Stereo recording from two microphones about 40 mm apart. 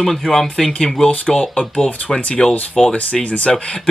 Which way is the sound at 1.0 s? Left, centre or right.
Left.